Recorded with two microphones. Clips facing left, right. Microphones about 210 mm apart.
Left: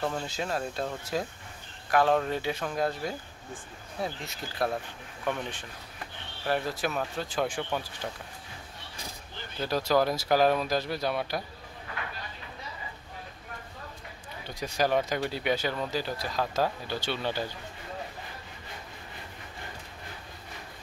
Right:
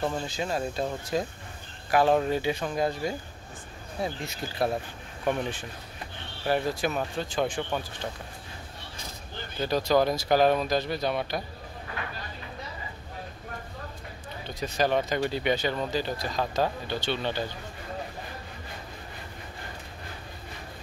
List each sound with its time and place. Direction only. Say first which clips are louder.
0.0 s speech: right 2 dB; 5° right (ahead or behind)
6.4 s speech: right 3 dB; centre (ahead or behind)
9.7 s speech: right 2 dB; 5° left (ahead or behind)
14.5 s speech: right 1 dB; 10° left (ahead or behind)